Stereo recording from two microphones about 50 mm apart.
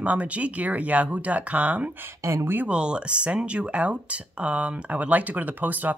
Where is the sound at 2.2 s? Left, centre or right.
Right.